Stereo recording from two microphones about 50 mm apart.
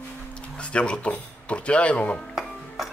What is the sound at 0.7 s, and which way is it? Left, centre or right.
Speech, left.